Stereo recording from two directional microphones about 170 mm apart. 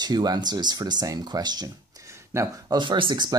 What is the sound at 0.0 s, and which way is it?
Speech, 25° right (ahead or behind).